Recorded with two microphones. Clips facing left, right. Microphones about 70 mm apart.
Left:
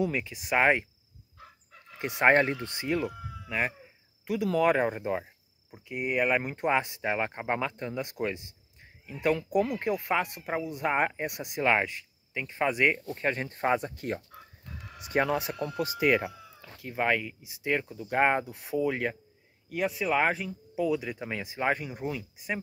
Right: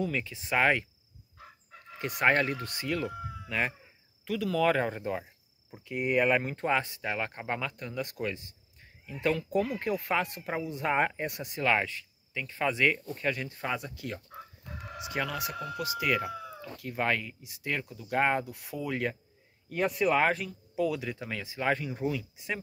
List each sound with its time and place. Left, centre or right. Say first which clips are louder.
0.0 s speech: left 3 dB; centre
2.0 s speech: left 3 dB; left
3.4 s speech: left 1 dB; centre
5.7 s speech: right 1 dB; centre
10.2 s speech: left 2 dB; centre
13.1 s speech: left 2 dB; left
16.8 s speech: left 2 dB; centre
19.7 s speech: right 1 dB; centre
21.2 s speech: left 2 dB; centre